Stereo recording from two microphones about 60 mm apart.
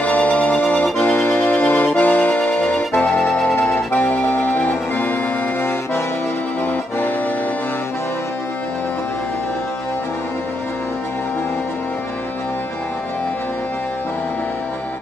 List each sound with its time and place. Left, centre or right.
0.0 s music: left